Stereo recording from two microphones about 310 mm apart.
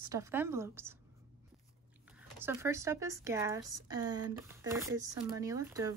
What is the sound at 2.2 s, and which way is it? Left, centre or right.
Speech, centre.